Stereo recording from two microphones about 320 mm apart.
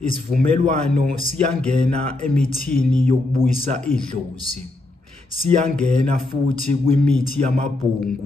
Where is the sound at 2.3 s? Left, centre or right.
Centre.